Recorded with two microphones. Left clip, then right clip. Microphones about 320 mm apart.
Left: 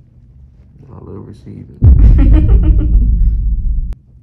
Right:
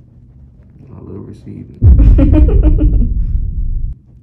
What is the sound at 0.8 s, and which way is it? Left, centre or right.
Speech, centre.